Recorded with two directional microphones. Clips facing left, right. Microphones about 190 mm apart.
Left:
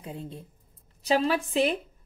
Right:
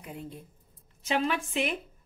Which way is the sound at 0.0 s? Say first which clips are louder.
Left 3 dB; 30° left (ahead or behind).